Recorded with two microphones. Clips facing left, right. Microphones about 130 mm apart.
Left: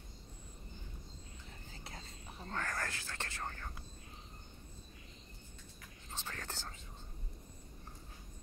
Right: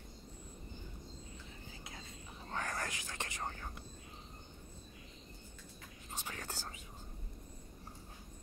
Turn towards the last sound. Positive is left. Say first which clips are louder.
# right 1 dB
turn(degrees=-10)  # may be behind; listen again after turning